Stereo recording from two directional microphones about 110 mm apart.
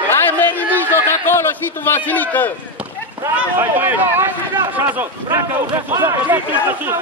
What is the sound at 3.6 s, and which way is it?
Speech, 20° right (ahead or behind).